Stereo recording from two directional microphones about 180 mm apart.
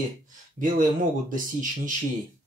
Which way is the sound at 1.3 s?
50° right (ahead or behind).